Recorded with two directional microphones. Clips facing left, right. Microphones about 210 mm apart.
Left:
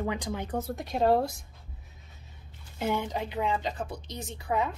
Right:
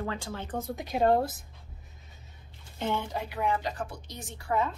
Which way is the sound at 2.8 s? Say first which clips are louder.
Left 2 dB; 15° left (ahead or behind).